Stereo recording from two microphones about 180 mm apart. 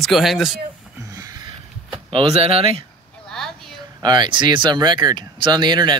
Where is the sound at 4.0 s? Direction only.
25° right (ahead or behind).